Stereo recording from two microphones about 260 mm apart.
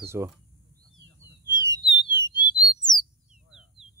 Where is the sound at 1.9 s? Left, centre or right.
Left.